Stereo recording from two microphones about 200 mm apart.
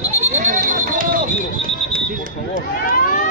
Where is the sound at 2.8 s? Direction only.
45° left (ahead or behind).